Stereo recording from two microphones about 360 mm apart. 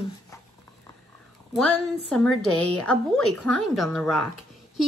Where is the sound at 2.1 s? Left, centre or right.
Centre.